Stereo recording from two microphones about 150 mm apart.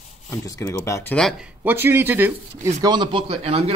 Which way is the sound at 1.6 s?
15° right (ahead or behind).